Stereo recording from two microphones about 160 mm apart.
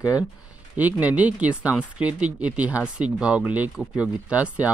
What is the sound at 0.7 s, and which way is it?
Speech, 10° right (ahead or behind).